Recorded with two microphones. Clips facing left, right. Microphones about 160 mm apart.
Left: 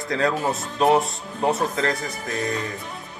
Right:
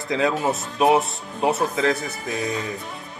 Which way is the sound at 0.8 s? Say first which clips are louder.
Even; 15° right (ahead or behind).